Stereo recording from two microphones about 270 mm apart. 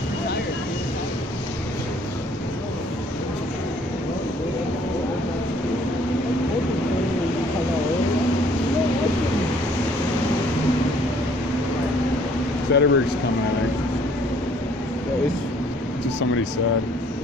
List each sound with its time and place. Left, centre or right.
12.7 s speech: left